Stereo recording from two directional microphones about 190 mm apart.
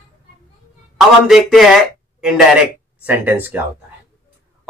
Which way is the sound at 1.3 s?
Centre (ahead or behind).